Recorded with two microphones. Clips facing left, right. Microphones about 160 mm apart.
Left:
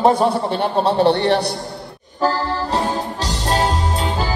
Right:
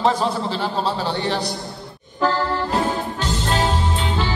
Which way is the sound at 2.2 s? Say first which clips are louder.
Left 1 dB; 35° left (ahead or behind).